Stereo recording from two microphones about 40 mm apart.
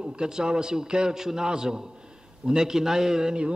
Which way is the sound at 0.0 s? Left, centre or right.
Centre.